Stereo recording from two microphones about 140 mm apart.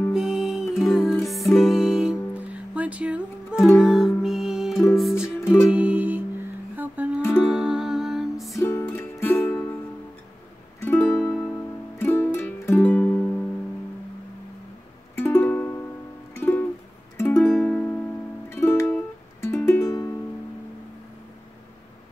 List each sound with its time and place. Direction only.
0.1 s music: 5° right (ahead or behind)
7.2 s music: 20° left (ahead or behind)
7.5 s music: 5° right (ahead or behind)
8.5 s music: 15° left (ahead or behind)
10.8 s music: 15° left (ahead or behind)
15.1 s music: 15° left (ahead or behind)